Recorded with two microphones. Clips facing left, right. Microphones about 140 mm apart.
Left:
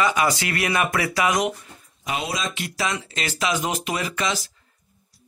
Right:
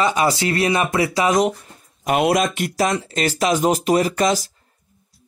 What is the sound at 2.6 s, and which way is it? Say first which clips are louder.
Speech: right 7 dB; 45° right (ahead or behind).